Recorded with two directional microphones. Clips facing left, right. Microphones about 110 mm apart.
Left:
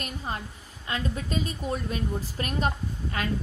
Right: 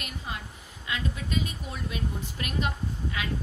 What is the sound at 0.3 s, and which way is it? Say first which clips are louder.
A woman's voice: left 4 dB; 40° left (ahead or behind).